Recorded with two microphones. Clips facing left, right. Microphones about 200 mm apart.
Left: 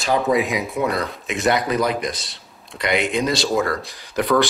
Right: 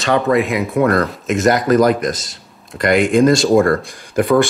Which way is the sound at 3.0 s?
50° right (ahead or behind).